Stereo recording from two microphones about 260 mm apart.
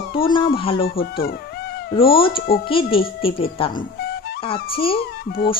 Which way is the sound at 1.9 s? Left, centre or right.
Centre.